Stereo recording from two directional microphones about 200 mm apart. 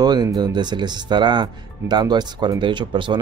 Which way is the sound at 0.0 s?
20° right (ahead or behind).